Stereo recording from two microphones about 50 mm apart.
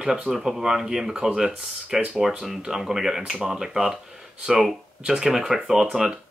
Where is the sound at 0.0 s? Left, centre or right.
Centre.